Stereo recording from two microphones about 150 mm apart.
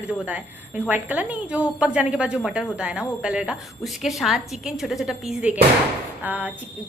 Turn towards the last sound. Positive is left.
turn(degrees=-10)  # may be behind; listen again after turning